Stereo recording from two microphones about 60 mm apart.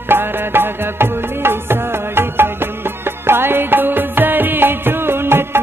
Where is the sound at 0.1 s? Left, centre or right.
Right.